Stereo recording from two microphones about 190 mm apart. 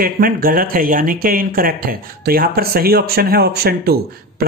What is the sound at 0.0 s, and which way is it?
Speech, 50° right (ahead or behind).